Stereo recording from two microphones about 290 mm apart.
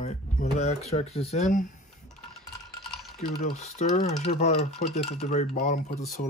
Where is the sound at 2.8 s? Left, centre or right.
Centre.